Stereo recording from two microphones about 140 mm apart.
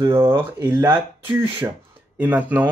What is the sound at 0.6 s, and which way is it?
Speech, 10° right (ahead or behind).